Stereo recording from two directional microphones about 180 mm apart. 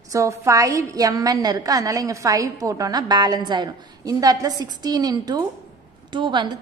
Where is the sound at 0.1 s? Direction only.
15° right (ahead or behind).